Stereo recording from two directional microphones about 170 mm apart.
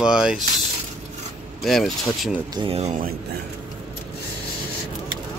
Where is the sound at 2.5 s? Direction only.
35° right (ahead or behind).